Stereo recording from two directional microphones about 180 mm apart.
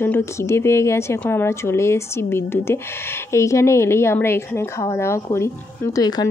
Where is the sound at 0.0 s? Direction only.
15° left (ahead or behind).